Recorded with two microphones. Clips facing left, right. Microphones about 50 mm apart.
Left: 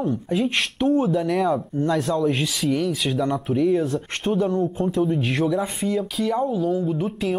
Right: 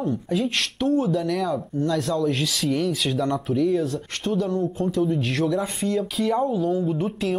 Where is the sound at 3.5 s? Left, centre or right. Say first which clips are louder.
Left 2 dB; left.